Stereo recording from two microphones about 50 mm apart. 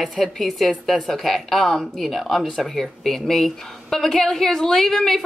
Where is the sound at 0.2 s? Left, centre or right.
Centre.